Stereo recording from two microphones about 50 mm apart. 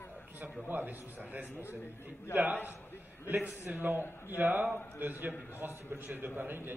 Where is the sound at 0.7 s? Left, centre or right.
Right.